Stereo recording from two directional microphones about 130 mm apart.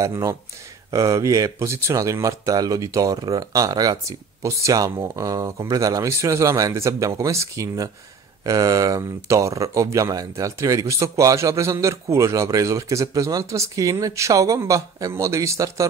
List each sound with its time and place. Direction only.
0.0 s speech: 25° right (ahead or behind)